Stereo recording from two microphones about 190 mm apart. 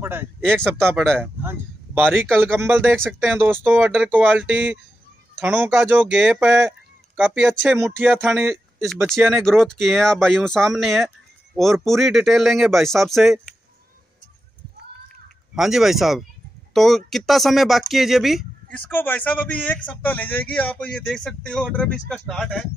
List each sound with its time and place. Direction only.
0.0 s a sound: 10° right (ahead or behind)
0.4 s speech: 5° left (ahead or behind)
1.2 s speech: 10° right (ahead or behind)
9.2 s speech: centre (ahead or behind)
15.5 s a man's voice: centre (ahead or behind)